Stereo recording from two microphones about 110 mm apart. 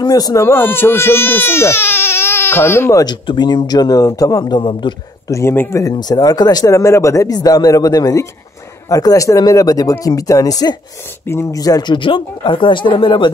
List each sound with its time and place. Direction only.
0.1 s speech: 30° left (ahead or behind)
3.3 s speech: 40° left (ahead or behind)
4.6 s speech: 50° left (ahead or behind)
5.3 s speech: 20° left (ahead or behind)
5.9 s speech: 40° left (ahead or behind)
11.2 s speech: 20° left (ahead or behind)
11.6 s speech: 40° left (ahead or behind)